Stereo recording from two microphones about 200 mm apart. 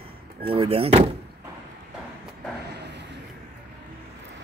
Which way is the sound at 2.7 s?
55° right (ahead or behind).